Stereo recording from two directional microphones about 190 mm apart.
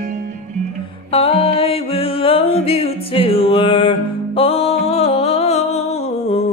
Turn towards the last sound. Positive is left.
turn(degrees=35)  # may be behind; listen again after turning